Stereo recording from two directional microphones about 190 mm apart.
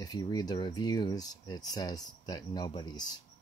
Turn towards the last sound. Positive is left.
turn(degrees=20)  # may be behind; listen again after turning